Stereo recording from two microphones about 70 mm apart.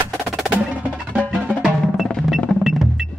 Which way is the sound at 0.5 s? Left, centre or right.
Right.